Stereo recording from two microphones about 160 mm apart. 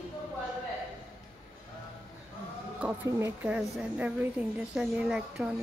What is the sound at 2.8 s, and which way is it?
Speech, 10° right (ahead or behind).